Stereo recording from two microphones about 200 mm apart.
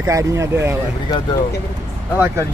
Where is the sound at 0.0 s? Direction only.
15° right (ahead or behind).